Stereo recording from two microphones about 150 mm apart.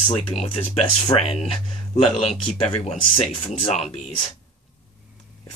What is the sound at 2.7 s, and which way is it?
Speech, 45° left (ahead or behind).